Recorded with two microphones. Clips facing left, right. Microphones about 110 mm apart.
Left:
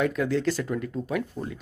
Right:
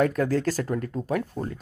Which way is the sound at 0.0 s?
40° right (ahead or behind).